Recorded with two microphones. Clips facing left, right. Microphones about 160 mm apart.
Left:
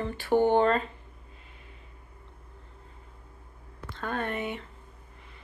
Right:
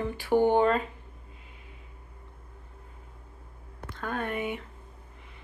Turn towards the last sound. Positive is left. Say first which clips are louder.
# even
turn(degrees=-10)  # may be behind; listen again after turning